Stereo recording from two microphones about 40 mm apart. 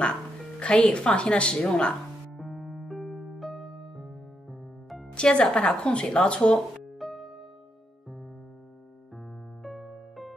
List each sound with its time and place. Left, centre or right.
0.6 s speech: left
2.3 s electric piano: centre
5.1 s speech: left
7.0 s music: centre
9.6 s electric piano: centre